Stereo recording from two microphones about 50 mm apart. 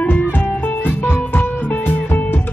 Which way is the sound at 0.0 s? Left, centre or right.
Left.